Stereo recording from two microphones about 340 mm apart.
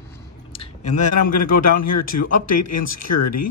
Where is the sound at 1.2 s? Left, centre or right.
Left.